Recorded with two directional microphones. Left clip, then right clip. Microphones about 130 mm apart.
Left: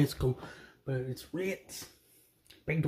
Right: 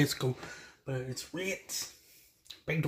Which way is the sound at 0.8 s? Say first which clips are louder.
Left 1 dB; 30° left (ahead or behind).